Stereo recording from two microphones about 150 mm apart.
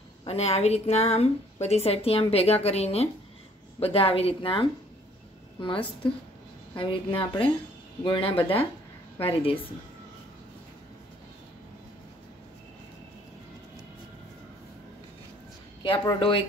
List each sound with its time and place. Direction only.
0.2 s a woman's voice: 45° left (ahead or behind)
16.1 s a woman's voice: 35° left (ahead or behind)